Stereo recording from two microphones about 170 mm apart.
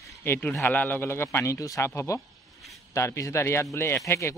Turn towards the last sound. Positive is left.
turn(degrees=15)  # may be behind; listen again after turning